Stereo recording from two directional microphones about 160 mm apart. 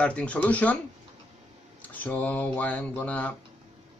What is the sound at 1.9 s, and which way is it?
Speech, 10° left (ahead or behind).